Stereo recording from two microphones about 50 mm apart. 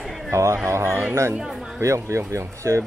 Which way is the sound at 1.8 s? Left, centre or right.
Right.